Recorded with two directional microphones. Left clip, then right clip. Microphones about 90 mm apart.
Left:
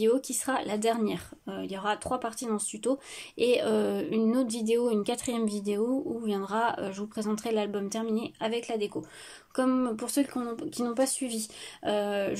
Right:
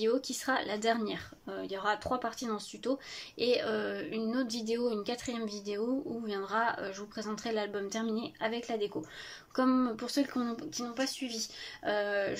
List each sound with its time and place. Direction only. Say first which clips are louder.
0.0 s speech: left 5 dB; 30° left (ahead or behind)
2.5 s speech: left 5 dB; 30° left (ahead or behind)
9.9 s speech: left 3 dB; 30° left (ahead or behind)
10.2 s speech: left 2 dB; 15° left (ahead or behind)
10.8 s speech: left 8 dB; 60° left (ahead or behind)
11.8 s speech: left 3 dB; 30° left (ahead or behind)